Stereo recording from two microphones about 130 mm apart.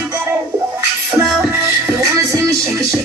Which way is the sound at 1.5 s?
20° right (ahead or behind).